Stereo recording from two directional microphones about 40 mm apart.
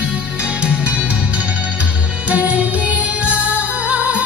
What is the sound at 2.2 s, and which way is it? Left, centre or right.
Music, right.